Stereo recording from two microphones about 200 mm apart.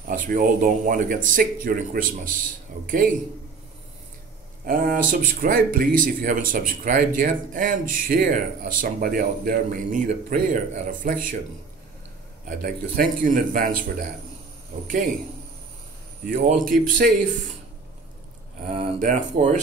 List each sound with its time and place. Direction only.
0.0 s speech: 45° right (ahead or behind)
4.6 s speech: 45° right (ahead or behind)
12.4 s speech: 45° right (ahead or behind)
14.9 s speech: 40° right (ahead or behind)
16.3 s speech: 45° right (ahead or behind)
16.5 s speech: centre (ahead or behind)
16.8 s speech: 40° right (ahead or behind)
18.7 s speech: 35° right (ahead or behind)